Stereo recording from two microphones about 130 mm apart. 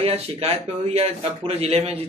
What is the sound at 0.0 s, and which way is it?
A man's voice, 50° right (ahead or behind).